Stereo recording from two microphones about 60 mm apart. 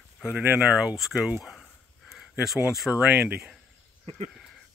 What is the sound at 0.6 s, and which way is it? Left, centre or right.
Speech, centre.